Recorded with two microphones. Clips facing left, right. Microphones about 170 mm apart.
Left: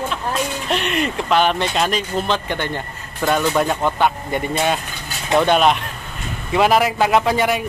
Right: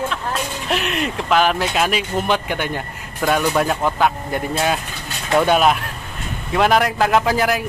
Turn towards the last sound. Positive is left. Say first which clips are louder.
# even
turn(degrees=0)  # may be behind; listen again after turning